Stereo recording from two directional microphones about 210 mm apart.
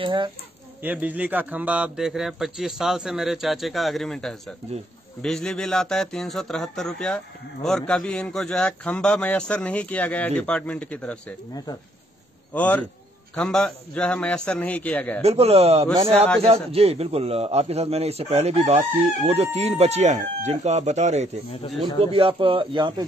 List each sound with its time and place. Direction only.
0.0 s a man's voice: 20° right (ahead or behind)
0.8 s a man's voice: 5° right (ahead or behind)
12.5 s a man's voice: 5° left (ahead or behind)
15.2 s a man's voice: 30° right (ahead or behind)